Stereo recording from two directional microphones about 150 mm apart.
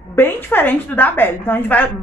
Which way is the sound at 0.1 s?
15° left (ahead or behind).